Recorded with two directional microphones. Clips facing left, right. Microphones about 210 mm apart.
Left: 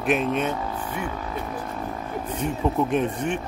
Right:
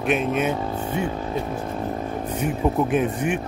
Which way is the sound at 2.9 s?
5° right (ahead or behind).